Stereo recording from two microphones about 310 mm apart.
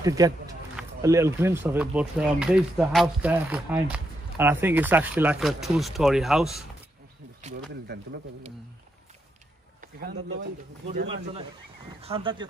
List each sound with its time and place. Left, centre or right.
0.0 s speech: centre
9.8 s speech: right
10.9 s speech: centre